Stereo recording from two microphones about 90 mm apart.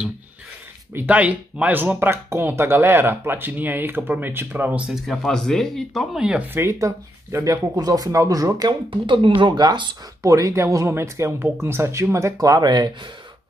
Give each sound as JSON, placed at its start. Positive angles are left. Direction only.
{"t": 0.9, "sound": "speech", "side_deg": -15}
{"t": 4.9, "sound": "speech", "side_deg": 5}
{"t": 6.5, "sound": "speech", "side_deg": -30}
{"t": 8.9, "sound": "speech", "side_deg": -70}
{"t": 10.2, "sound": "speech", "side_deg": -35}